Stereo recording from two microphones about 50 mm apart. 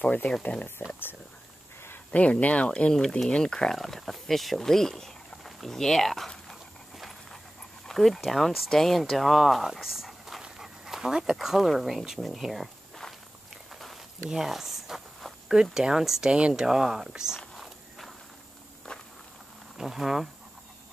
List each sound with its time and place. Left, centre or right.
0.0 s speech: left
2.1 s speech: left
2.9 s speech: centre
3.7 s speech: centre
7.8 s speech: centre
10.6 s dog: centre
11.3 s speech: centre
14.3 s walk: centre
15.4 s speech: centre
17.6 s walk: centre
18.9 s walk: centre
19.8 s speech: centre